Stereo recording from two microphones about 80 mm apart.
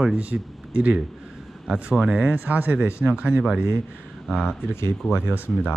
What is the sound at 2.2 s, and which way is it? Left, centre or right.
Speech, right.